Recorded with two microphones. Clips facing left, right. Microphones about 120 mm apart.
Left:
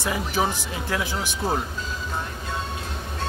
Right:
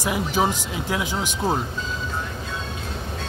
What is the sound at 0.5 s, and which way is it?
Speech, 15° right (ahead or behind).